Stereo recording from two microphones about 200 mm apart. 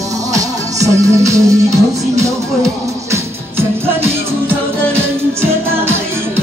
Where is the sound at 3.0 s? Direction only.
15° right (ahead or behind).